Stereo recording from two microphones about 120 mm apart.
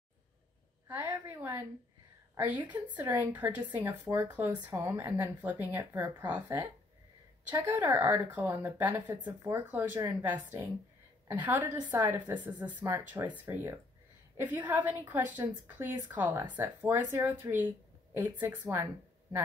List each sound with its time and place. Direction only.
0.9 s speech: 20° right (ahead or behind)
7.5 s speech: 15° right (ahead or behind)